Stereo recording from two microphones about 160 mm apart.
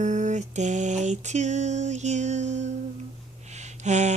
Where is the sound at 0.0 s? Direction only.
50° right (ahead or behind).